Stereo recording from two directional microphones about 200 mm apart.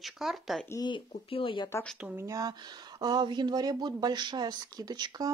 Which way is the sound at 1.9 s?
5° right (ahead or behind).